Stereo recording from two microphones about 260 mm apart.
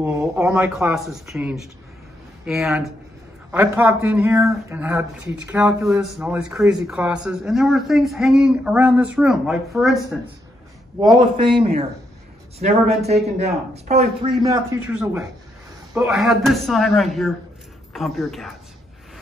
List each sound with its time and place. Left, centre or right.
0.0 s speech: centre
11.0 s a man's voice: centre